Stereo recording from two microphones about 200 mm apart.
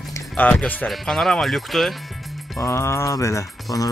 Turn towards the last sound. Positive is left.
turn(degrees=15)  # may be behind; listen again after turning